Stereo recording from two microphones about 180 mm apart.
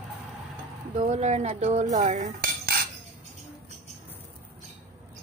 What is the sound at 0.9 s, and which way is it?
A woman's voice, 40° right (ahead or behind).